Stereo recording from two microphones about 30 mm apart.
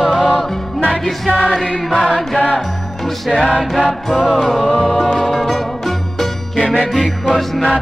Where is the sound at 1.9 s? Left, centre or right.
Left.